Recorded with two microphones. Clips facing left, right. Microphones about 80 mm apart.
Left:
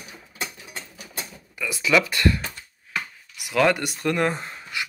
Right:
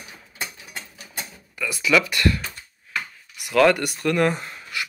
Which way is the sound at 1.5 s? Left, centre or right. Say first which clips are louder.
Right 1 dB; left.